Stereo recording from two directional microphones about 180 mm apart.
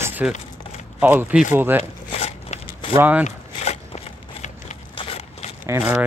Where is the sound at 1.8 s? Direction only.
35° left (ahead or behind).